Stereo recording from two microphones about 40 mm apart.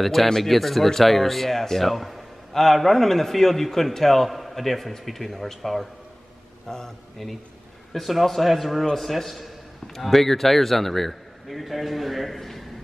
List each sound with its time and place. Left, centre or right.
0.0 s speech: centre
6.7 s a man's voice: centre
7.9 s speech: centre